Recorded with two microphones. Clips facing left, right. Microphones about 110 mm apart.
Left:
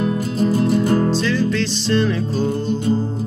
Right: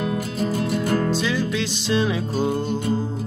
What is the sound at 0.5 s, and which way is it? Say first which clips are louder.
Music: left 6 dB; 30° left (ahead or behind).